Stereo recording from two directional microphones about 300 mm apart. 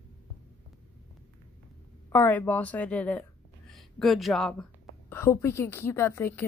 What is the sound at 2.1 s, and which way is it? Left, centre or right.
A woman's voice, centre.